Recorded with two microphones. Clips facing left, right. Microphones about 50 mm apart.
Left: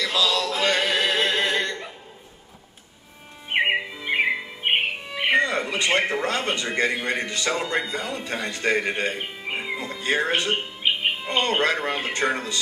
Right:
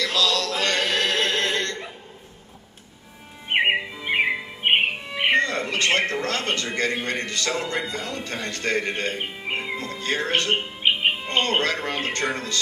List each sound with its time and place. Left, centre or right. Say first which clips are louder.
0.0 s a sound: even; centre
3.5 s music: right 1 dB; centre
5.3 s a man's voice: left 1 dB; centre
9.2 s speech: right 2 dB; centre
9.6 s music: even; centre
10.8 s music: right 3 dB; centre
11.2 s a man's voice: left 4 dB; centre